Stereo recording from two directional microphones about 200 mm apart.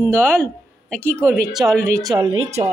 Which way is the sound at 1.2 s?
15° right (ahead or behind).